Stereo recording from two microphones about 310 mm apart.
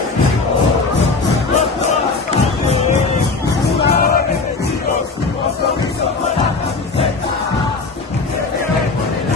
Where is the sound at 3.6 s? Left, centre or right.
Left.